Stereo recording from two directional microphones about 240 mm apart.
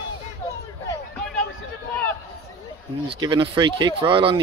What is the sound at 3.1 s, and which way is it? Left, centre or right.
Speech, centre.